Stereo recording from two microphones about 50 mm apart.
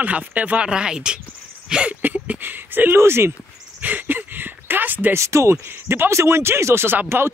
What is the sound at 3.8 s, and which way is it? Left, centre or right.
Speech, right.